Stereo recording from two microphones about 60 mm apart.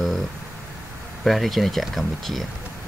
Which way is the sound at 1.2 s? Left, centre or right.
Centre.